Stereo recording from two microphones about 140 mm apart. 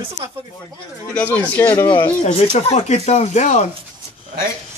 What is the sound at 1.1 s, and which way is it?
Speech, 10° left (ahead or behind).